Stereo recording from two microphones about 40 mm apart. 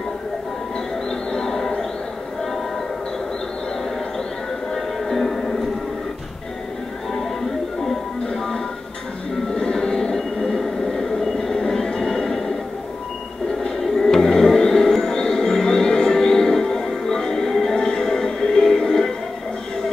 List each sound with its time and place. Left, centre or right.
1.3 s a sound: centre
4.7 s music: centre
7.9 s music: centre
9.5 s train: centre
13.6 s music: centre
17.7 s music: left